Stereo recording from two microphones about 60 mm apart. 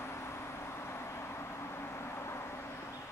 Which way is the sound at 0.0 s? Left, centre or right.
Left.